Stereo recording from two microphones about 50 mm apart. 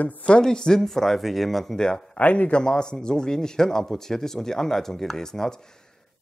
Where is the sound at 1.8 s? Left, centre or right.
Centre.